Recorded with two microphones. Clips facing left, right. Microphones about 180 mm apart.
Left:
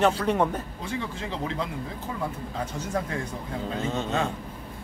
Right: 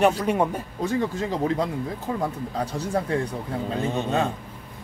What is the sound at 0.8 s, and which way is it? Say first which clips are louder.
Speech: right 11 dB; 45° right (ahead or behind).